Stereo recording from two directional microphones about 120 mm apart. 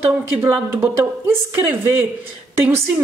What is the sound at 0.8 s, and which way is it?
Speech, 20° right (ahead or behind).